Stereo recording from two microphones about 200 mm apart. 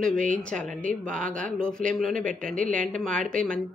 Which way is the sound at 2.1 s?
40° right (ahead or behind).